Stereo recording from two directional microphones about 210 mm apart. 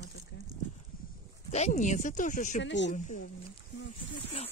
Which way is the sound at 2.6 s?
60° left (ahead or behind).